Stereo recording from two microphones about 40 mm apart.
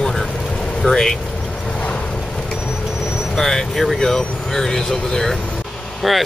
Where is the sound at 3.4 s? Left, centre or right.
Centre.